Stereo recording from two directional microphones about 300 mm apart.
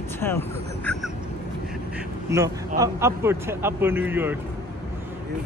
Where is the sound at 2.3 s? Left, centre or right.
Centre.